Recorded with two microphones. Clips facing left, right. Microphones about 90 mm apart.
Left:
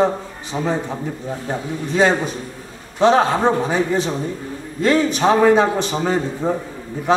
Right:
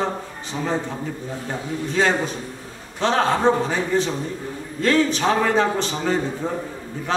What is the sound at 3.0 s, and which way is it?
A man's voice, 15° left (ahead or behind).